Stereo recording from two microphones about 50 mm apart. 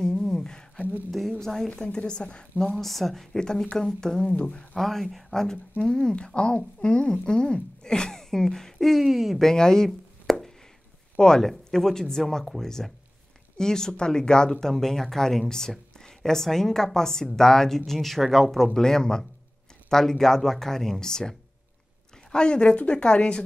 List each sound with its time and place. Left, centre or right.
0.0 s a sound: centre
1.4 s speech: centre
1.7 s speech: left
2.6 s speech: centre
4.3 s speech: left
4.7 s speech: centre
9.5 s speech: centre
10.3 s a sound: centre
11.1 s speech: centre